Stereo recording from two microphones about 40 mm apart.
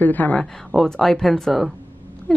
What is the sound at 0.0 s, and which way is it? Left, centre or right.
Speech, left.